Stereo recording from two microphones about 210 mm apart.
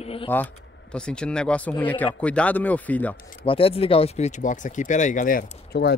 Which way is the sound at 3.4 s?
25° left (ahead or behind).